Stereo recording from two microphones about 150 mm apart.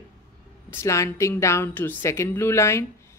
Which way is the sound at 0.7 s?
20° left (ahead or behind).